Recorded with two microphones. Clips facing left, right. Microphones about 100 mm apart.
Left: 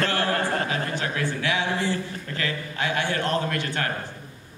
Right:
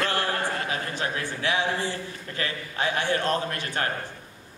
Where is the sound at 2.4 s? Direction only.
25° right (ahead or behind).